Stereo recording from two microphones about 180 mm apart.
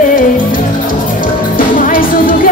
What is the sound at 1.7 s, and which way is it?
Music, 50° left (ahead or behind).